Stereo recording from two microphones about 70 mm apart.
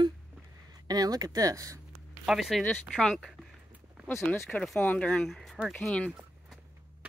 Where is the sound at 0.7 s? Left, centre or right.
Right.